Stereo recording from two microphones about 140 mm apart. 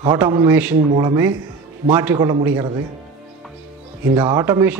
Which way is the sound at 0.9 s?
25° right (ahead or behind).